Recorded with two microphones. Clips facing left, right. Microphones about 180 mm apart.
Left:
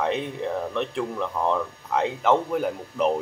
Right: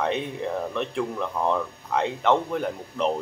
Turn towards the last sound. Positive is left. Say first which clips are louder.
# left 2 dB
turn(degrees=5)  # may be behind; listen again after turning